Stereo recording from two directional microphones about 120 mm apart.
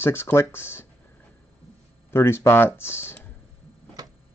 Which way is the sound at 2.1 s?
20° left (ahead or behind).